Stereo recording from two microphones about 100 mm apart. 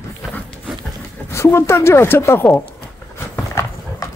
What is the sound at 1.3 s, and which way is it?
Speech, 25° left (ahead or behind).